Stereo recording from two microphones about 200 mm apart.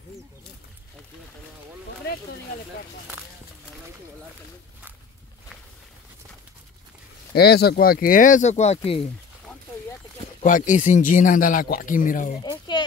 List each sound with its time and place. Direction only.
7.3 s speech: 50° left (ahead or behind); by 9.0 s 30° left (ahead or behind)
10.4 s speech: 40° left (ahead or behind)
12.4 s a sound: 20° left (ahead or behind)